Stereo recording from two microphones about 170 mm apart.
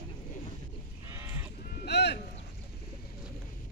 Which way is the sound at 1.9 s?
80° left.